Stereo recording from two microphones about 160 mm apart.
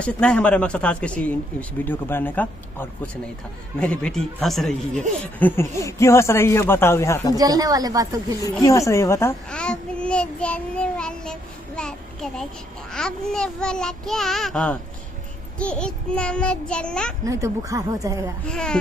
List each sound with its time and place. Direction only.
0.0 s speech: 5° left (ahead or behind)
3.8 s child singing: 5° left (ahead or behind)
5.2 s speech: 15° left (ahead or behind)
7.3 s speech: 25° right (ahead or behind)
8.5 s speech: 20° left (ahead or behind)
9.5 s child singing: 5° left (ahead or behind)
17.2 s speech: 20° right (ahead or behind)
18.5 s child singing: 5° left (ahead or behind)